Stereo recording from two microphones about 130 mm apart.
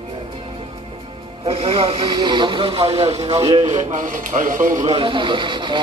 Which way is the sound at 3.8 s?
80° right.